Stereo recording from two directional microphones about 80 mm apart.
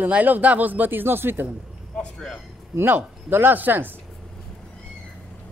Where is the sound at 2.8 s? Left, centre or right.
Right.